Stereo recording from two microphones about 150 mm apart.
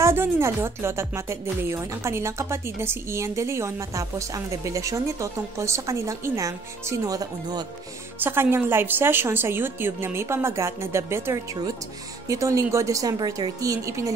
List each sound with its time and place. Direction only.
0.0 s a woman's voice: 15° right (ahead or behind)
8.2 s a woman's voice: 15° right (ahead or behind)